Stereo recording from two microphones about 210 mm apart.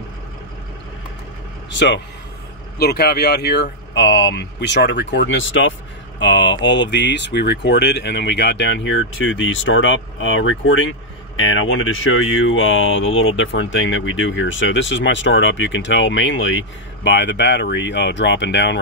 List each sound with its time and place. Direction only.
1.7 s speech: 60° left (ahead or behind)